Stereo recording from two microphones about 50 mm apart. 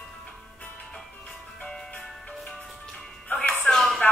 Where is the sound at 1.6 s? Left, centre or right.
Centre.